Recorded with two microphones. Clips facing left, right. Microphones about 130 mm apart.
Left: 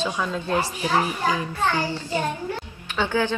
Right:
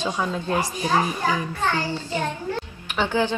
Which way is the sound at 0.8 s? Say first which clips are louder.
Right 2 dB; 15° left (ahead or behind).